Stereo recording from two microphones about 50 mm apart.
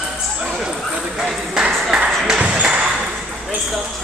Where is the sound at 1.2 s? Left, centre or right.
Centre.